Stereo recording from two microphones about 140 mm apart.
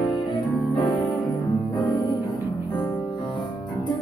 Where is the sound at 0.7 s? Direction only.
35° left (ahead or behind).